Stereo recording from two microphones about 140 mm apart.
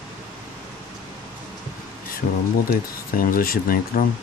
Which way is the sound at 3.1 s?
90° left.